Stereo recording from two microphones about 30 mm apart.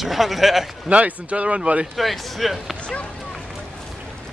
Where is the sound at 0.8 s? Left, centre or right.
Right.